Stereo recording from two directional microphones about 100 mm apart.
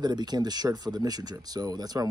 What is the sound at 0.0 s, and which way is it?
Speech, 45° right (ahead or behind).